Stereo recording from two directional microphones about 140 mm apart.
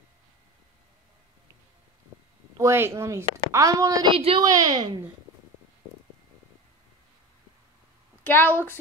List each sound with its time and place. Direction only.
2.5 s a woman's voice: 20° right (ahead or behind)
4.1 s a woman's voice: 40° right (ahead or behind)
4.4 s a woman's voice: 25° right (ahead or behind)
8.2 s a woman's voice: 15° left (ahead or behind)